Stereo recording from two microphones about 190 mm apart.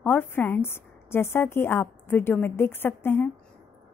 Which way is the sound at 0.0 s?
10° left (ahead or behind).